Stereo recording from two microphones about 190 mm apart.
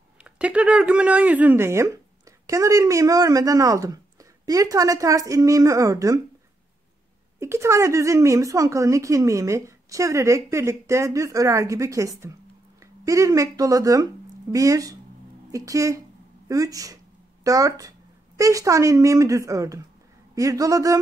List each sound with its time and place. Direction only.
0.2 s a woman's voice: 5° right (ahead or behind)
7.3 s a woman's voice: 15° right (ahead or behind)